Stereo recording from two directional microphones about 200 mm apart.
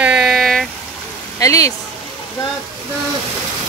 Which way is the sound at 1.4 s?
15° left (ahead or behind).